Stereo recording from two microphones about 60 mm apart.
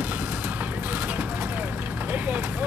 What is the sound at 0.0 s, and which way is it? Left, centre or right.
Vehicle, right.